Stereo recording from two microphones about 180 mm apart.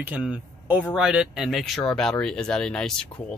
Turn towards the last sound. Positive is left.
turn(degrees=5)  # may be behind; listen again after turning